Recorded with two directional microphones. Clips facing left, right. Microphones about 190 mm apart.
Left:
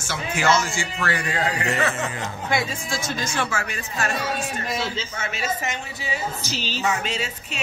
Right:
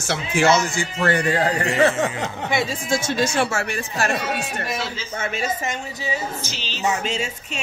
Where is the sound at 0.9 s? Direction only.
35° right (ahead or behind).